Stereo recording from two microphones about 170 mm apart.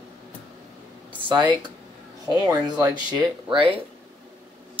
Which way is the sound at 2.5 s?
25° right (ahead or behind).